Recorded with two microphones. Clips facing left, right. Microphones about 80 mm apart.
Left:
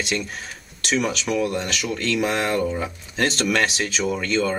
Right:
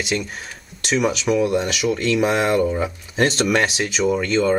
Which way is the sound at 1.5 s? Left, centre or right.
Centre.